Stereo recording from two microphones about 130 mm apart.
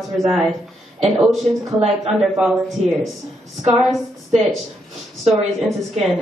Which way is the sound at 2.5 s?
Centre (ahead or behind).